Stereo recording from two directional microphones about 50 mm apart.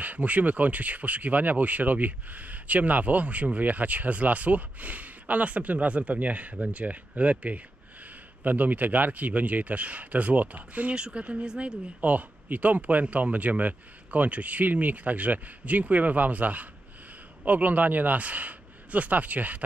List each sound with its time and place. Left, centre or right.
0.0 s speech: right
11.0 s speech: right
12.0 s speech: right